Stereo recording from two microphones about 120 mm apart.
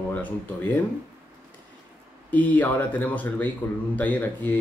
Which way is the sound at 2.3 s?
15° left (ahead or behind).